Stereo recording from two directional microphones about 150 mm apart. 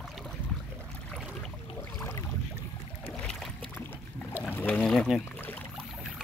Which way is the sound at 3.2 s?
5° left (ahead or behind).